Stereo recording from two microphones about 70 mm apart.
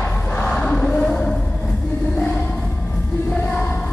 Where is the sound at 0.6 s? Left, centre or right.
Centre.